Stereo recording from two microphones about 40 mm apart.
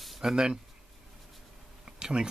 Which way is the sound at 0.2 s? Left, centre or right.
Centre.